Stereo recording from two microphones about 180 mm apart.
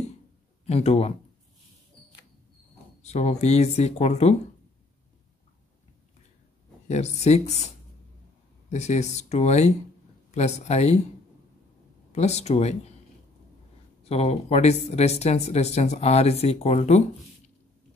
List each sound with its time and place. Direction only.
0.7 s speech: 35° left (ahead or behind)
3.0 s speech: 40° left (ahead or behind)
6.9 s speech: 40° left (ahead or behind)
12.1 s speech: 40° left (ahead or behind)
14.0 s speech: 35° left (ahead or behind)